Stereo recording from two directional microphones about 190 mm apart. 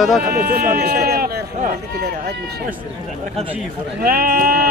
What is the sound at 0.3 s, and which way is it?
Speech, 50° right (ahead or behind).